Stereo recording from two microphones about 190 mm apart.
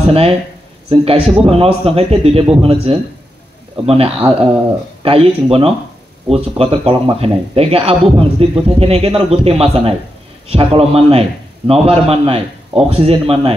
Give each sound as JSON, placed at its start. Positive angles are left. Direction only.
{"t": 0.8, "sound": "a man's voice", "side_deg": -30}